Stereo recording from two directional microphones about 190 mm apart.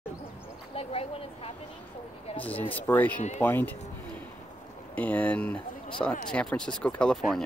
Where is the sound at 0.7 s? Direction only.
30° left (ahead or behind).